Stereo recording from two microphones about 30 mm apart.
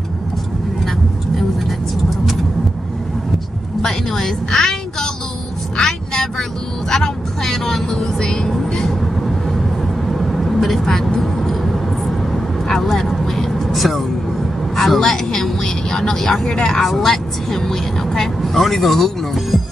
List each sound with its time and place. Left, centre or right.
4.1 s a sound: centre
6.9 s vehicle: centre
8.0 s vehicle: left
9.6 s vehicle: centre
13.7 s vehicle: centre
14.8 s vehicle: centre
16.7 s vehicle: centre
18.2 s speech: centre